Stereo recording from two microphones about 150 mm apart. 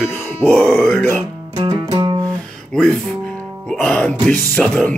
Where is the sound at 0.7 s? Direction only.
Centre (ahead or behind).